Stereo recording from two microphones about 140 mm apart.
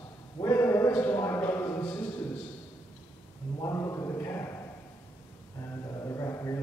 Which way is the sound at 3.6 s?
20° left (ahead or behind).